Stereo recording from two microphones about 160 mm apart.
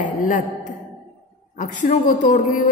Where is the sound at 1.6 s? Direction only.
50° left (ahead or behind).